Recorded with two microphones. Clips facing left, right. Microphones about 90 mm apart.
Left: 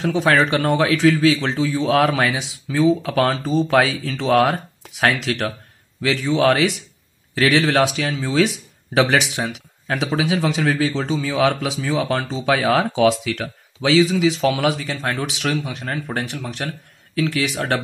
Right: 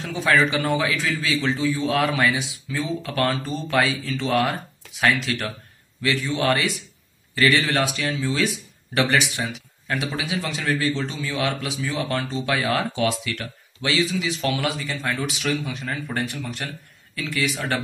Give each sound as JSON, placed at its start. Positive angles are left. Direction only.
{"t": 0.2, "sound": "a man's voice", "side_deg": 65}
{"t": 15.0, "sound": "a man's voice", "side_deg": 75}